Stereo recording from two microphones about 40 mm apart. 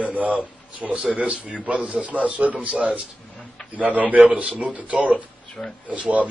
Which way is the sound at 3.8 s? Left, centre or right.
Right.